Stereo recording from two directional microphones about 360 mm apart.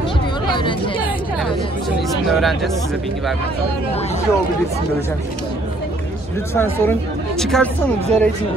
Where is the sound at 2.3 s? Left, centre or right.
Centre.